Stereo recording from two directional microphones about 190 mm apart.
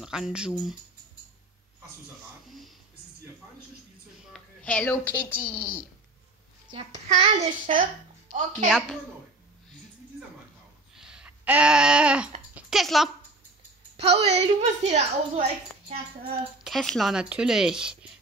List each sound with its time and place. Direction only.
0.0 s speech: 5° right (ahead or behind)
4.3 s a sound: 5° left (ahead or behind)
5.3 s a woman's voice: 5° left (ahead or behind)
6.7 s a child's voice: 30° right (ahead or behind)
8.6 s speech: 5° left (ahead or behind)
11.0 s a sound: 5° right (ahead or behind)
13.9 s a woman's voice: 30° right (ahead or behind)
16.6 s speech: centre (ahead or behind)